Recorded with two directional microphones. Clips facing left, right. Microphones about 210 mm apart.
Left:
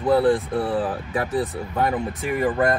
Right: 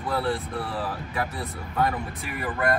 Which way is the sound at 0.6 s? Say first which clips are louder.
Left 8 dB; 50° left (ahead or behind).